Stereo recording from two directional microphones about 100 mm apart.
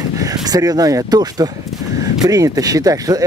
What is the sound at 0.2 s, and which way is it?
Speech, 35° right (ahead or behind).